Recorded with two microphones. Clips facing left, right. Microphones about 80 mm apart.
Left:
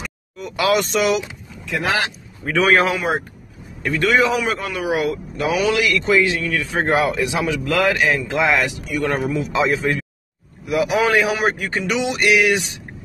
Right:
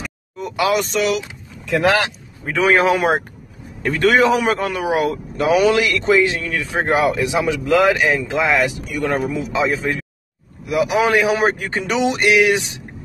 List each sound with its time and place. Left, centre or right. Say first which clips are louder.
0.6 s speech: even; centre
2.5 s speech: right 1 dB; centre
3.8 s a man's voice: right 3 dB; right
8.3 s speech: right 1 dB; centre
10.8 s a man's voice: right 1 dB; centre
11.3 s a man's voice: right 2 dB; right